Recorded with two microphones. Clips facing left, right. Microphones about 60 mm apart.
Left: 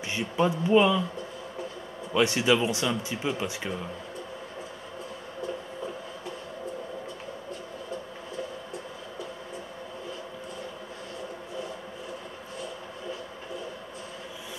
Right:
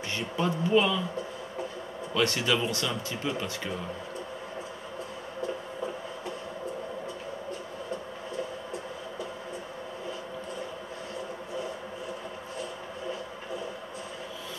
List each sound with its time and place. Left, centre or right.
0.1 s speech: centre
2.1 s speech: centre